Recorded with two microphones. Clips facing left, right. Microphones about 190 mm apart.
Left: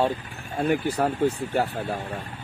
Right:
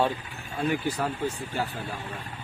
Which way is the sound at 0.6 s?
60° left (ahead or behind).